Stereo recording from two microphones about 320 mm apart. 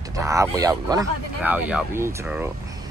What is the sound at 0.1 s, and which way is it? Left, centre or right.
Speech, centre.